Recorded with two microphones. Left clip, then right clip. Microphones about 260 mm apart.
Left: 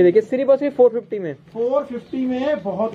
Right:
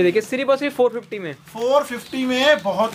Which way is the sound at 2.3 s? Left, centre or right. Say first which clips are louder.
Right 6 dB; right.